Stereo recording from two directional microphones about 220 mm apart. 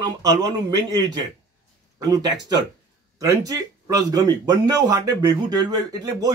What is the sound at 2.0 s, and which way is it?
Speech, 15° right (ahead or behind).